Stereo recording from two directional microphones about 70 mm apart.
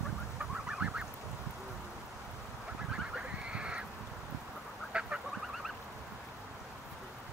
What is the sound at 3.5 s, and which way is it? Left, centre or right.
Crow, centre.